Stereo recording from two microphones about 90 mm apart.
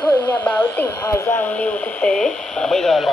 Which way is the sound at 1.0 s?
30° left (ahead or behind).